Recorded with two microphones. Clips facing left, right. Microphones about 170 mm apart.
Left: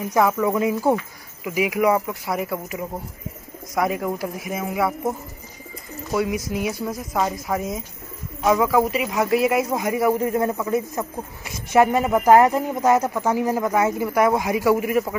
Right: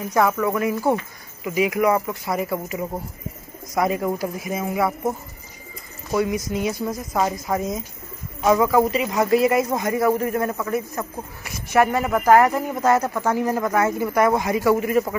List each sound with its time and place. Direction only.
0.1 s speech: 15° left (ahead or behind)
6.1 s speech: 5° left (ahead or behind)